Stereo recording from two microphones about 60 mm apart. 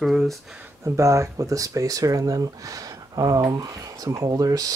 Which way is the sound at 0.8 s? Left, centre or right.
Right.